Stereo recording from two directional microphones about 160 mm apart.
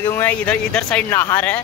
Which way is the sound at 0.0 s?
10° left (ahead or behind).